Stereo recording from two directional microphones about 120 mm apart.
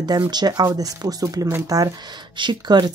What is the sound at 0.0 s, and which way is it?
Speech, 35° right (ahead or behind).